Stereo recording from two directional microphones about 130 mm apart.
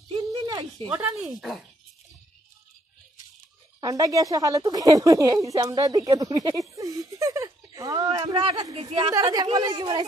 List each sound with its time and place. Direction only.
0.2 s a sound: 30° right (ahead or behind)
0.9 s speech: 5° right (ahead or behind)
3.8 s a woman's voice: 25° right (ahead or behind)
5.6 s a sound: 30° right (ahead or behind)
8.3 s a woman's voice: 35° right (ahead or behind)
9.1 s speech: 30° right (ahead or behind)